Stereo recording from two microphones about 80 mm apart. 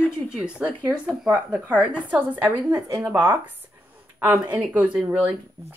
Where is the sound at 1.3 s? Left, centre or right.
Centre.